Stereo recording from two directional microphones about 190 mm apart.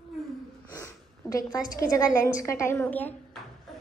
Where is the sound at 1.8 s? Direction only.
15° left (ahead or behind).